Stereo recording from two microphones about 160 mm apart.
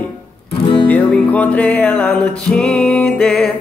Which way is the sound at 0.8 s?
10° left (ahead or behind).